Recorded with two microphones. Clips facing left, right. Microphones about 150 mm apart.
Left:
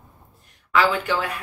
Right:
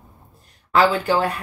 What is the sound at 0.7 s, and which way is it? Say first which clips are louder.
Speech: right 3 dB; 35° right (ahead or behind).